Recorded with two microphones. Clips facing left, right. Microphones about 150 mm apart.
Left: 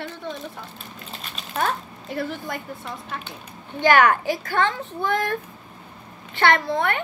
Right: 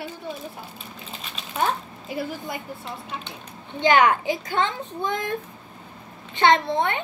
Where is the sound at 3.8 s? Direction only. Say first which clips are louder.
Left 1 dB; 20° right (ahead or behind).